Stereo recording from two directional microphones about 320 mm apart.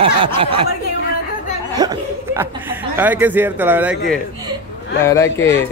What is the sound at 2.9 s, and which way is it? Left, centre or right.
Speech, centre.